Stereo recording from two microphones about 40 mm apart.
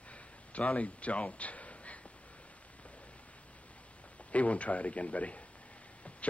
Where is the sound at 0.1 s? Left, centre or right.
Left.